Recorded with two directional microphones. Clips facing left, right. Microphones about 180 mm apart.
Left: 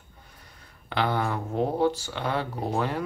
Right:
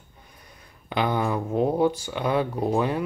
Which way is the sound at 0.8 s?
15° right (ahead or behind).